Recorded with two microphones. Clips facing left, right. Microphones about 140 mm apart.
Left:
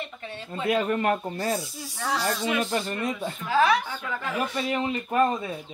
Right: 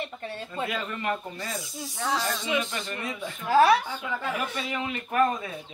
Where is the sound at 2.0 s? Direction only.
Centre (ahead or behind).